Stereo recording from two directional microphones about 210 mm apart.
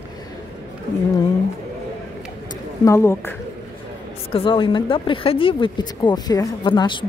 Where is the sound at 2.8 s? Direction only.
10° left (ahead or behind).